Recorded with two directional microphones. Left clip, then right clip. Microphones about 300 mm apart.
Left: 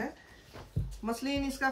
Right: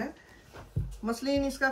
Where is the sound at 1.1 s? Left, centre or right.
Centre.